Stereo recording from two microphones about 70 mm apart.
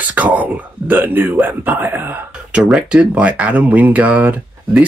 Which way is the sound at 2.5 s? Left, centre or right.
Centre.